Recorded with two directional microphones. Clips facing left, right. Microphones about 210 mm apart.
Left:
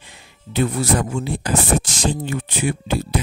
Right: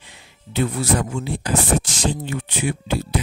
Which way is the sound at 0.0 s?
45° left (ahead or behind).